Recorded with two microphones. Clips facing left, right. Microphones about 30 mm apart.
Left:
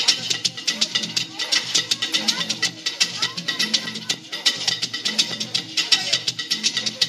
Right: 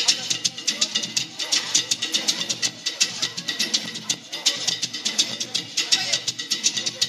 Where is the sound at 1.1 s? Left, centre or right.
Left.